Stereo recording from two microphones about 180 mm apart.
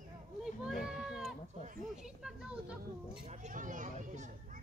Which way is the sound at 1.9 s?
5° right (ahead or behind).